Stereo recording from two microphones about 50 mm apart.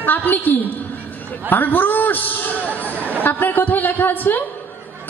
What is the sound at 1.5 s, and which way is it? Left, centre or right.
Speech, left.